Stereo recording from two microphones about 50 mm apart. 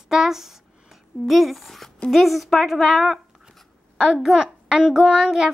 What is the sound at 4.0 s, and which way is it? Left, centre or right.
Child singing, centre.